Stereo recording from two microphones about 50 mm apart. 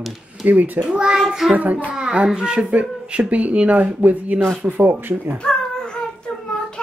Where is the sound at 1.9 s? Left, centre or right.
Centre; by 5.2 s right.